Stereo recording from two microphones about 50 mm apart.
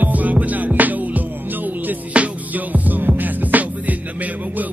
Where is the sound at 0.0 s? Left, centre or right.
Right.